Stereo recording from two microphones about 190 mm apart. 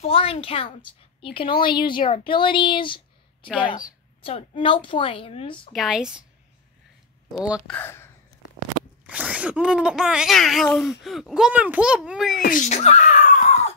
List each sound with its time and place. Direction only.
0.0 s a woman's voice: 30° left (ahead or behind)
4.2 s a woman's voice: 30° left (ahead or behind)
5.7 s speech: centre (ahead or behind)
7.3 s speech: 5° right (ahead or behind)
7.7 s speech: 10° left (ahead or behind)
9.0 s speech: 5° right (ahead or behind)
12.4 s a sound: 45° left (ahead or behind)